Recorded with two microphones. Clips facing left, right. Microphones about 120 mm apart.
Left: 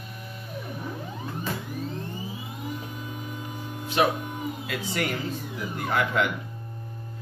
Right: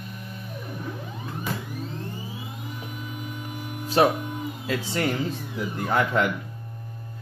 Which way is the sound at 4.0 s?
35° right (ahead or behind).